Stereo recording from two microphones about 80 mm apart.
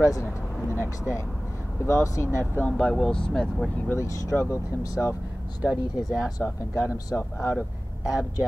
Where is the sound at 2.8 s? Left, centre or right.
Centre.